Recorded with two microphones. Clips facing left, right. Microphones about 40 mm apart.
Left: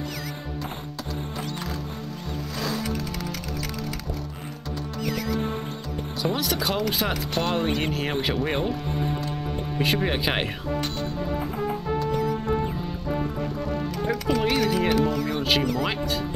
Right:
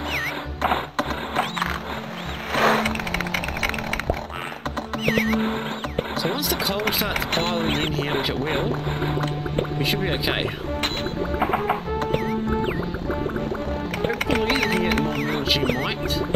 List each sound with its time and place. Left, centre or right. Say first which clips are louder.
0.6 s music: right 11 dB; right
5.0 s music: right 6 dB; right
6.3 s speech: right 1 dB; centre
7.2 s speech: right 2 dB; right
9.8 s speech: left 4 dB; centre
11.3 s music: right 9 dB; right
14.0 s music: right 2 dB; right